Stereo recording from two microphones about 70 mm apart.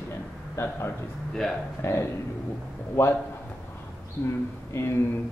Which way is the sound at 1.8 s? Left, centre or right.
Left.